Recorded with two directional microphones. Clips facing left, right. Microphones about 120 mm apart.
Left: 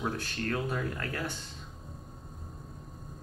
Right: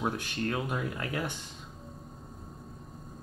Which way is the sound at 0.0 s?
15° right (ahead or behind).